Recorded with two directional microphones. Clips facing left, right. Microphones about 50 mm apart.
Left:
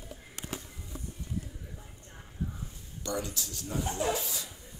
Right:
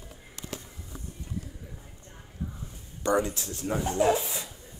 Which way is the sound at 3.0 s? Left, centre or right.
Right.